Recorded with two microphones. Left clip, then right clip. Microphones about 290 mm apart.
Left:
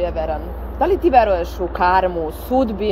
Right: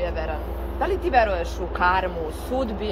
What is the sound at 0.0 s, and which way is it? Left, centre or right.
Speech, left.